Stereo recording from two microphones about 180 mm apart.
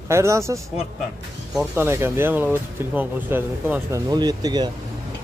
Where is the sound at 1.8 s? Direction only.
15° right (ahead or behind).